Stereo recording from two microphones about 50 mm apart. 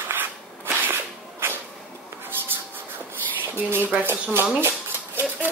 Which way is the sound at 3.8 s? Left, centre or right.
Right.